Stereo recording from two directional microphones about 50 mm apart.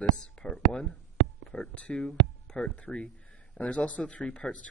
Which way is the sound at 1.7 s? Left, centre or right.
Left.